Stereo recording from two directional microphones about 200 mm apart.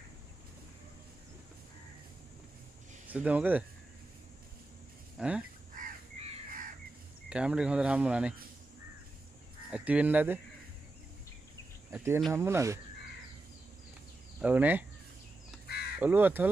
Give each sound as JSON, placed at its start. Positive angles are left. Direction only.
{"t": 3.1, "sound": "speech", "side_deg": -5}
{"t": 5.1, "sound": "a sound", "side_deg": -5}
{"t": 5.8, "sound": "crow", "side_deg": -35}
{"t": 7.2, "sound": "speech", "side_deg": -5}
{"t": 9.7, "sound": "speech", "side_deg": -5}
{"t": 11.9, "sound": "speech", "side_deg": -10}
{"t": 14.4, "sound": "speech", "side_deg": -10}
{"t": 16.0, "sound": "speech", "side_deg": -10}